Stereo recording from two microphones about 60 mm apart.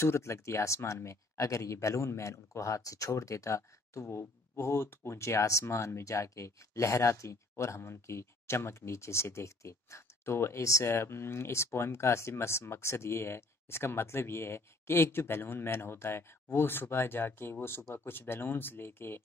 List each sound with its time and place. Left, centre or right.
0.0 s speech: left